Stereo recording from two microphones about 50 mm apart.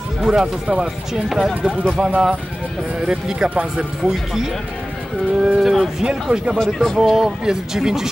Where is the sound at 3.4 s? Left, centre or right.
Right.